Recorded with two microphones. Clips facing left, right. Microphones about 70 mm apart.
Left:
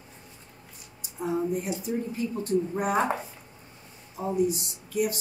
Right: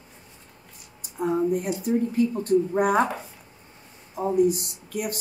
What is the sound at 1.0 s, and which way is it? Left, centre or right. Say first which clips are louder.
A woman's voice: right 5 dB; right.